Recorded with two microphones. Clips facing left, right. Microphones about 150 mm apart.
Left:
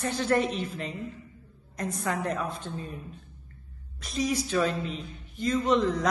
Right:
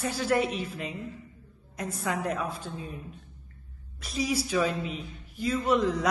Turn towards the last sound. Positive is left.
turn(degrees=-10)  # may be behind; listen again after turning